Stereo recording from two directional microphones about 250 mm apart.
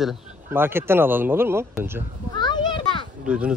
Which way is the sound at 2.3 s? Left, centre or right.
Centre.